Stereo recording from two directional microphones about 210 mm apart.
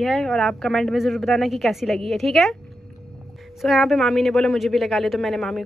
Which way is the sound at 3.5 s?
Centre (ahead or behind).